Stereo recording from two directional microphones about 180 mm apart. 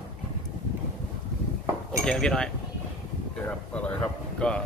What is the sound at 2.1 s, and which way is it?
Speech, 5° left (ahead or behind).